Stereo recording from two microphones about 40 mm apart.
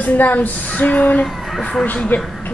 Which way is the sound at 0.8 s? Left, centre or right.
Left.